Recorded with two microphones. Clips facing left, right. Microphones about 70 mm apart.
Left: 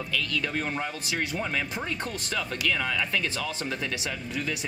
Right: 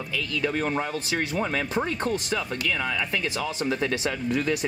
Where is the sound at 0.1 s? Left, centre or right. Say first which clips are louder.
Right 3 dB; centre.